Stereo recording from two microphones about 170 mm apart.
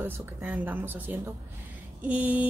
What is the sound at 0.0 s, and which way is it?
Speech, 10° right (ahead or behind).